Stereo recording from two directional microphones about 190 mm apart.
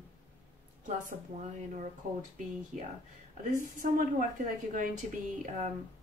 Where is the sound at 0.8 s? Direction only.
40° right (ahead or behind).